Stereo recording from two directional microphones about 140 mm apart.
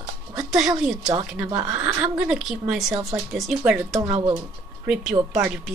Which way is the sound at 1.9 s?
5° right (ahead or behind).